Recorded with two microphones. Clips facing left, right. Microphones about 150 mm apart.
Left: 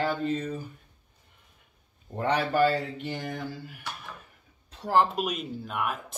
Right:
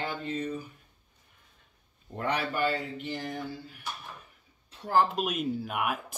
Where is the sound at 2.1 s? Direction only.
30° left (ahead or behind).